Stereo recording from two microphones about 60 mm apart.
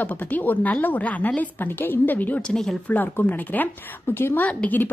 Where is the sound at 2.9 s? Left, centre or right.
Left.